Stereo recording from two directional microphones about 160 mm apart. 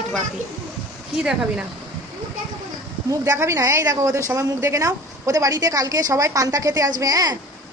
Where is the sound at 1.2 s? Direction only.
5° right (ahead or behind).